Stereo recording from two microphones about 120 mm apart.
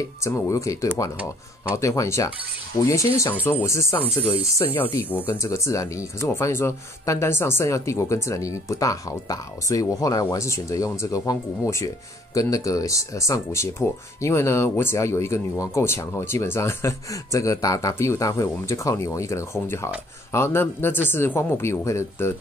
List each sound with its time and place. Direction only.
0.2 s speech: 25° left (ahead or behind)
4.1 s speech: 50° left (ahead or behind)
4.7 s speech: 20° left (ahead or behind)